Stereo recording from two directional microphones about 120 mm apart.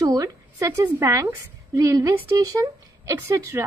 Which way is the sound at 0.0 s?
30° right (ahead or behind).